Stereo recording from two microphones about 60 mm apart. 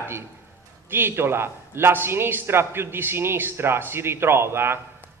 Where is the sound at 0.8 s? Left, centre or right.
Right.